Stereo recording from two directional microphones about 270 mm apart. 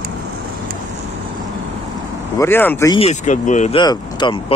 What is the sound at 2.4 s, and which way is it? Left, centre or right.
Speech, centre.